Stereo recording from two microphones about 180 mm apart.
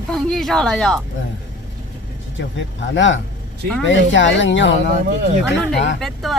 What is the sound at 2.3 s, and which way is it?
Speech, 90° left.